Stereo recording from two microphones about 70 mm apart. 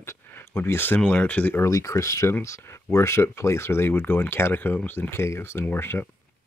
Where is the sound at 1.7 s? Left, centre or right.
Left.